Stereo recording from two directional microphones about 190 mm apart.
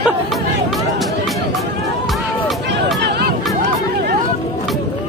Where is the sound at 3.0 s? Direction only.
60° right (ahead or behind).